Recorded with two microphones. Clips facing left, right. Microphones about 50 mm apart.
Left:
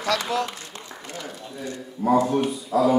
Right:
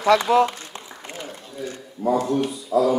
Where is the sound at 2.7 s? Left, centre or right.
Left.